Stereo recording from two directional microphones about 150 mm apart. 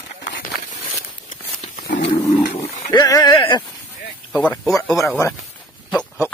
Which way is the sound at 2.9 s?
25° left (ahead or behind).